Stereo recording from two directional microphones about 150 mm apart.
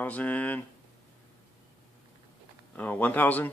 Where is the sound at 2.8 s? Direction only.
10° left (ahead or behind).